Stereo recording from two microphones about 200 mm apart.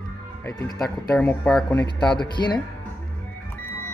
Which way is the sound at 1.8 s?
20° left (ahead or behind).